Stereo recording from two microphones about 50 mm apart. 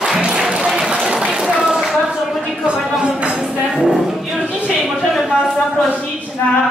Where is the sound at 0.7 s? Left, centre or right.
Centre.